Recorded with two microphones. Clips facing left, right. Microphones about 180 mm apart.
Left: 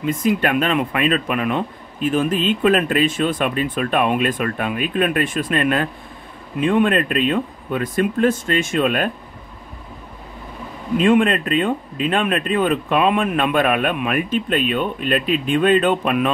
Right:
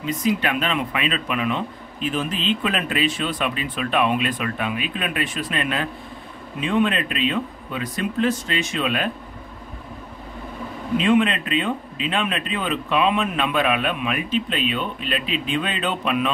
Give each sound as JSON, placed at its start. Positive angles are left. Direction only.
{"t": 0.0, "sound": "speech", "side_deg": 50}
{"t": 11.0, "sound": "speech", "side_deg": 50}